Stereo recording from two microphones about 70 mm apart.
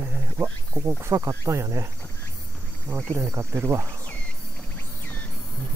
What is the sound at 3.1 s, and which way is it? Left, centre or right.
Speech, right.